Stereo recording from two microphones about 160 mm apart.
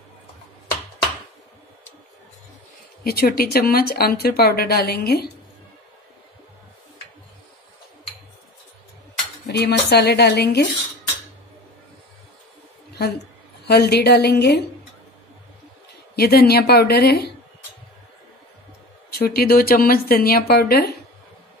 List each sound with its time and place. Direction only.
3.0 s speech: 70° left (ahead or behind)
9.5 s speech: 90° left
13.7 s speech: 90° left
16.2 s a woman's voice: 80° left
19.1 s speech: 70° left (ahead or behind)